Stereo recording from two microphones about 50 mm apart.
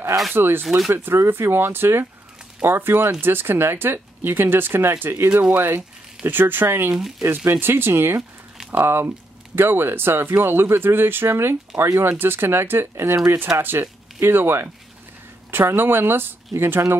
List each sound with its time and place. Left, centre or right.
0.3 s speech: right
5.3 s speech: right
6.2 s speech: right
7.0 s speech: centre
7.6 s speech: right
12.1 s speech: right
13.6 s speech: right